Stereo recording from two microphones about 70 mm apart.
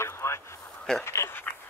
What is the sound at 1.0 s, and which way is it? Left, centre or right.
Speech, left.